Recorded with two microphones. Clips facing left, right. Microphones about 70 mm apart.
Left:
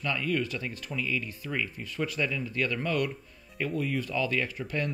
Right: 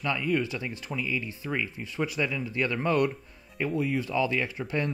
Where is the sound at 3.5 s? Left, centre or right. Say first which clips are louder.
Right 2 dB; centre.